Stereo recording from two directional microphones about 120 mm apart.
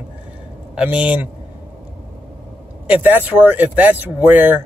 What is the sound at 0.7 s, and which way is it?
Speech, 10° right (ahead or behind).